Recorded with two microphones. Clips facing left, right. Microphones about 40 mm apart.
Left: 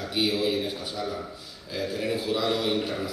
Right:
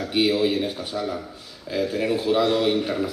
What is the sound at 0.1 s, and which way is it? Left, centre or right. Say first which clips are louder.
Speech: right 5 dB; right.